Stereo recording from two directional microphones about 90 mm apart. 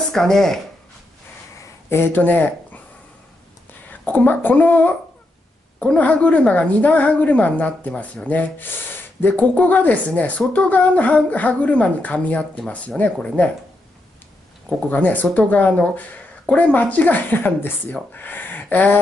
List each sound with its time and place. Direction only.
0.1 s speech: 5° left (ahead or behind)
1.9 s speech: 25° left (ahead or behind)
4.0 s a woman's voice: 20° left (ahead or behind)
14.9 s a woman's voice: 20° left (ahead or behind)
18.1 s a sound: 20° left (ahead or behind)